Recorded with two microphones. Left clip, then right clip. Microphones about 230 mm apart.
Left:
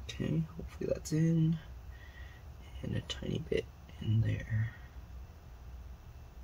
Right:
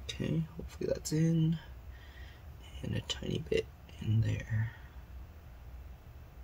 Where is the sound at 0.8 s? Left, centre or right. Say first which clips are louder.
Right 1 dB; centre.